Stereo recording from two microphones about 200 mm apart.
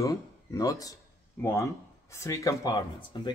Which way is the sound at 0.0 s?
15° left (ahead or behind).